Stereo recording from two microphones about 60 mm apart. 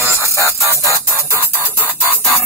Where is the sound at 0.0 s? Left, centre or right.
Right.